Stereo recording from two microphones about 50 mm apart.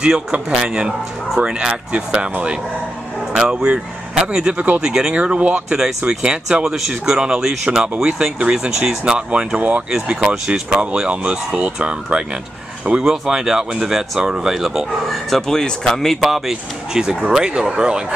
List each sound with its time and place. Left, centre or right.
0.5 s speech: centre
3.3 s speech: centre
4.6 s speech: right
4.8 s speech: centre
5.1 s speech: right
5.7 s speech: centre
6.6 s speech: centre
9.6 s speech: right
9.8 s speech: centre
12.9 s speech: centre
15.2 s speech: centre